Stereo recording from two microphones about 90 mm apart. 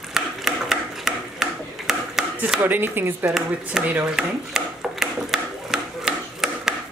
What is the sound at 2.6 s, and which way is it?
Speech, 20° right (ahead or behind).